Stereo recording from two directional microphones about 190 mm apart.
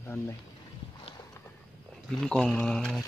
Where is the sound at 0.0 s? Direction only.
10° left (ahead or behind).